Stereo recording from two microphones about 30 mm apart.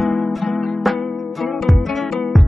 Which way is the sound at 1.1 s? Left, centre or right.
Centre.